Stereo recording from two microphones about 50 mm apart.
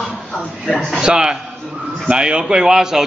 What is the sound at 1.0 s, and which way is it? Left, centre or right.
A man's voice, centre.